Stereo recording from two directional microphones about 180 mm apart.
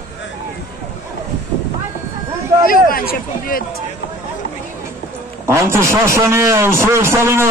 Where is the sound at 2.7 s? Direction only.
55° left (ahead or behind).